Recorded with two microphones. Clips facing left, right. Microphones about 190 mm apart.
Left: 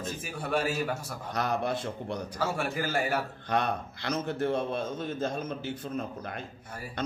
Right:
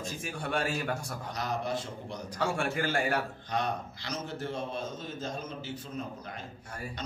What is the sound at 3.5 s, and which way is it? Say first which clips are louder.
A man's voice: left 4 dB; 60° left (ahead or behind).